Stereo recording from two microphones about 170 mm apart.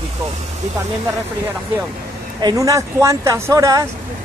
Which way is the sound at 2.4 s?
20° right (ahead or behind).